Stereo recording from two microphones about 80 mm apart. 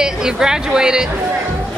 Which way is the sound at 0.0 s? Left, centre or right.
Centre.